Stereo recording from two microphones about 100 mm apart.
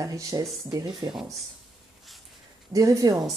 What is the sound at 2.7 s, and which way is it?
Speech, 35° right (ahead or behind).